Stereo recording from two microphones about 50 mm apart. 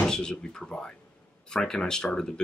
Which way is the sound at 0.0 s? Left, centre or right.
Centre.